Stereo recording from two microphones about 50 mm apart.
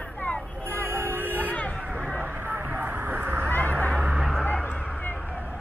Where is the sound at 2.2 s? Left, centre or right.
Right.